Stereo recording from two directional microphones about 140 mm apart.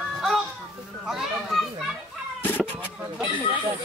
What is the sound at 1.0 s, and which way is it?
Children playing, centre (ahead or behind).